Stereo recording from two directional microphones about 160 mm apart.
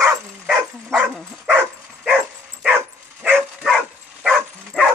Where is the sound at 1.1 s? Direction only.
5° right (ahead or behind).